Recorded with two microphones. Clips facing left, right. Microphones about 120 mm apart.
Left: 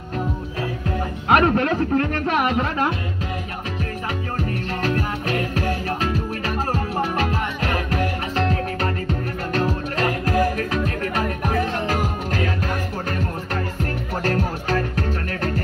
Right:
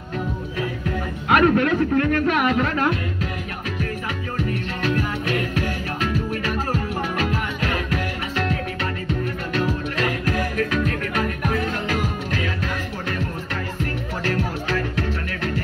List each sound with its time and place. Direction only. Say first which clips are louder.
1.3 s speech: right 1 dB; 30° left (ahead or behind)
4.8 s music: right 1 dB; 35° left (ahead or behind)
14.2 s music: left 1 dB; 40° left (ahead or behind)